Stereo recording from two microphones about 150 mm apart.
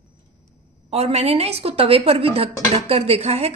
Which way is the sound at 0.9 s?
45° right (ahead or behind).